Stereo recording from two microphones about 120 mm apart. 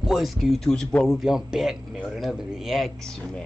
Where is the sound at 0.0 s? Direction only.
5° right (ahead or behind).